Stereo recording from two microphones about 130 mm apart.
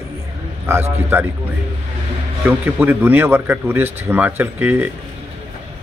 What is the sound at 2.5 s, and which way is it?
Speech, 15° right (ahead or behind).